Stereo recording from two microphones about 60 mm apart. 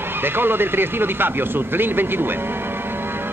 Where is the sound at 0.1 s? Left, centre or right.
Right.